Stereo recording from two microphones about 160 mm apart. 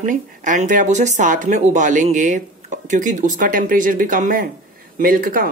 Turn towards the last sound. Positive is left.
turn(degrees=-60)  # may be behind; listen again after turning